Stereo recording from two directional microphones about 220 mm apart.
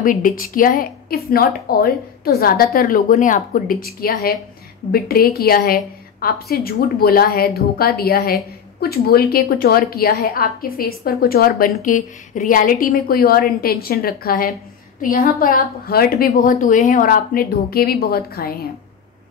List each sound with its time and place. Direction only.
0.0 s a woman's voice: 40° left (ahead or behind)